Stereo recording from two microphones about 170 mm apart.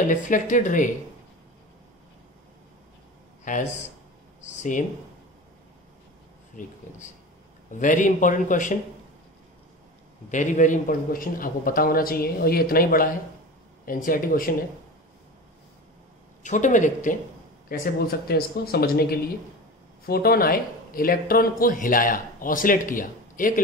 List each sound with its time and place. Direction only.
0.1 s speech: 50° left (ahead or behind)
3.5 s speech: 50° left (ahead or behind)
4.4 s a sound: 50° left (ahead or behind)
6.5 s speech: 50° left (ahead or behind)
7.8 s speech: 50° left (ahead or behind)
10.3 s speech: 45° left (ahead or behind)
16.4 s speech: 45° left (ahead or behind)
17.6 s speech: 65° left (ahead or behind)